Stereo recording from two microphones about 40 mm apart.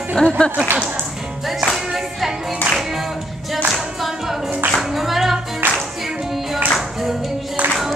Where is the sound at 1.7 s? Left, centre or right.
Centre.